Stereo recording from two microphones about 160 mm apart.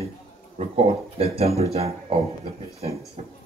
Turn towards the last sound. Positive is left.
turn(degrees=-40)  # may be behind; listen again after turning